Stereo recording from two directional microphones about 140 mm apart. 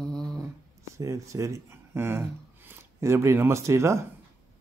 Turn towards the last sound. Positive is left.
turn(degrees=-20)  # may be behind; listen again after turning